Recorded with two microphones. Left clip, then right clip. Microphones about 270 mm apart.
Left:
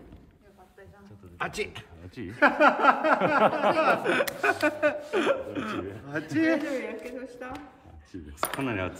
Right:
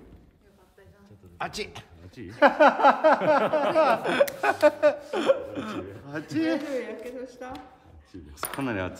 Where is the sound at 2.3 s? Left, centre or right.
Right.